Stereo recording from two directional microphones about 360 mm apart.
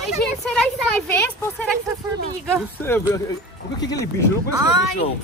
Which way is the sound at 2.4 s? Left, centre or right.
Centre.